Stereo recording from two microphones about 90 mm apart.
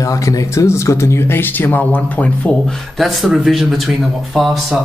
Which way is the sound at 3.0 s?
Centre (ahead or behind).